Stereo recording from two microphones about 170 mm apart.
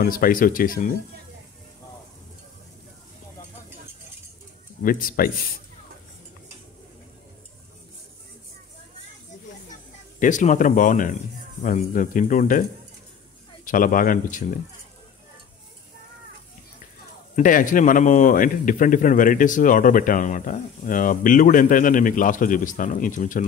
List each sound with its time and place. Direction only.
0.0 s speech: 55° left (ahead or behind)
4.8 s speech: 60° left (ahead or behind)
10.1 s a man's voice: 50° left (ahead or behind)
13.7 s a man's voice: 55° left (ahead or behind)
17.4 s a man's voice: 50° left (ahead or behind)